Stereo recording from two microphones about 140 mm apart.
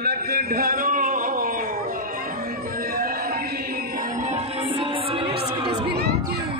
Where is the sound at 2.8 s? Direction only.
90° right.